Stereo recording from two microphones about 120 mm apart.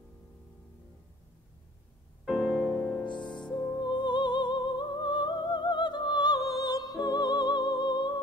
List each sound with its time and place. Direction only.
2.2 s music: 5° right (ahead or behind)
3.1 s music: 40° left (ahead or behind)